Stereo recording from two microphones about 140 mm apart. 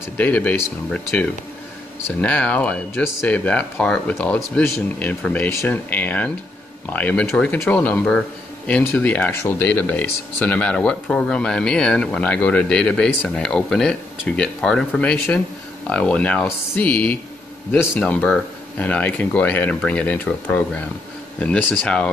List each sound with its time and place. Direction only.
0.2 s speech: 10° left (ahead or behind)